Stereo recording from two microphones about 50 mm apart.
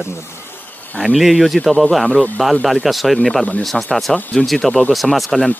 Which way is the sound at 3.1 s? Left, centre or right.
Centre.